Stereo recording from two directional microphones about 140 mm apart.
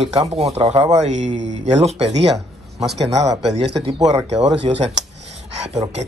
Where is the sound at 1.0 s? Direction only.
55° right (ahead or behind).